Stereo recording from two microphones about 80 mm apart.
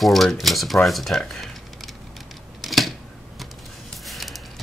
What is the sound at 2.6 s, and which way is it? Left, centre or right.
Typewriter, centre.